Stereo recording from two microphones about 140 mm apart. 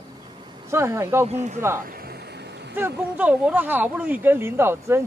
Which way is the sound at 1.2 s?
55° right (ahead or behind).